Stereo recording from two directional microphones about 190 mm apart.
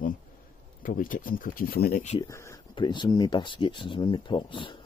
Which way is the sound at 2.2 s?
15° left (ahead or behind).